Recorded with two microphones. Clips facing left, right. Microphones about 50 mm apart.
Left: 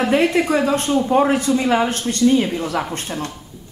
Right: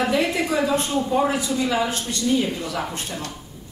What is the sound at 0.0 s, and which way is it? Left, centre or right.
A man's voice, left.